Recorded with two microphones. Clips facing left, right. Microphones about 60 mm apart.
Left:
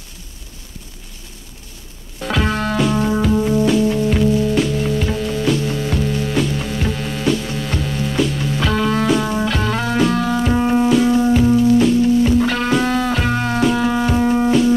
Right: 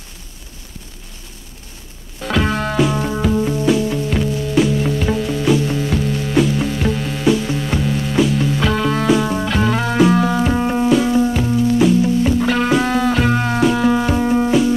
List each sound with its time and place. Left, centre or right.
2.2 s music: centre